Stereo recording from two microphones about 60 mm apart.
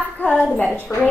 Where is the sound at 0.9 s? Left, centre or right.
Left.